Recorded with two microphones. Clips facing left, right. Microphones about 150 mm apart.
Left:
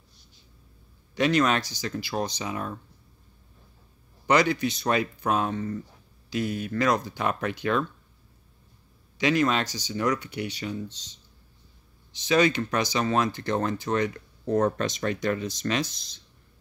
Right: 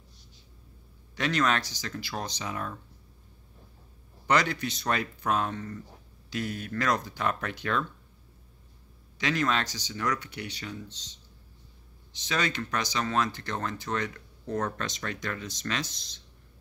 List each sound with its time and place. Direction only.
1.1 s speech: 10° left (ahead or behind)
4.3 s speech: 10° left (ahead or behind)
9.2 s speech: 10° left (ahead or behind)
12.1 s speech: 10° left (ahead or behind)
14.4 s speech: 20° left (ahead or behind)